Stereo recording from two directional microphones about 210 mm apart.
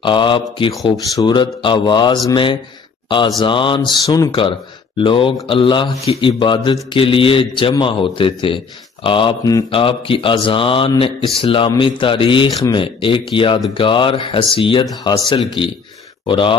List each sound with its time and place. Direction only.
0.0 s speech: 25° left (ahead or behind)